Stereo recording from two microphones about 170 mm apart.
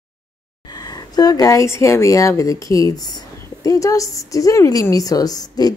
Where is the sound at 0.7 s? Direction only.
25° left (ahead or behind).